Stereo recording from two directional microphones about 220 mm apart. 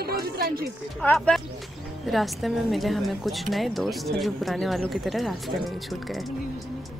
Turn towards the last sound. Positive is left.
turn(degrees=0)  # may be behind; listen again after turning